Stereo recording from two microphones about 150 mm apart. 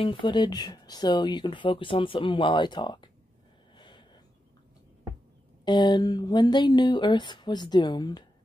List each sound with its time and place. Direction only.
0.0 s speech: 35° left (ahead or behind)
3.7 s a sound: 30° left (ahead or behind)
5.7 s speech: 30° left (ahead or behind)